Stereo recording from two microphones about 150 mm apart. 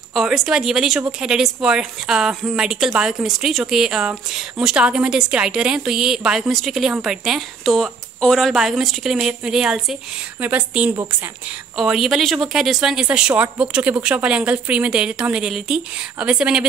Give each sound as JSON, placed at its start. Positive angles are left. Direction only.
{"t": 0.1, "sound": "a woman's voice", "side_deg": 0}